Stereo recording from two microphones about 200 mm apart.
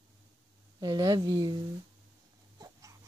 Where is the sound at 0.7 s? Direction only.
20° right (ahead or behind).